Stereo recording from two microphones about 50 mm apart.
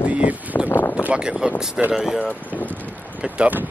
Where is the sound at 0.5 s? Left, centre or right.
Left.